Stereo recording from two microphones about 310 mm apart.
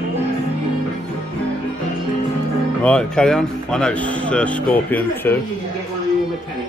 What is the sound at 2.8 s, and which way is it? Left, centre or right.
Speech, centre.